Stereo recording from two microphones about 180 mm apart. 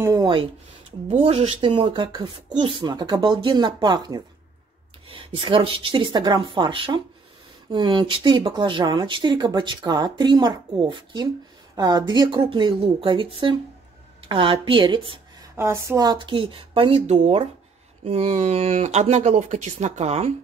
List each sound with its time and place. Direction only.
0.0 s a sound: 20° right (ahead or behind)
1.0 s speech: 35° right (ahead or behind)
15.5 s speech: 15° right (ahead or behind); by 20.3 s 35° right (ahead or behind)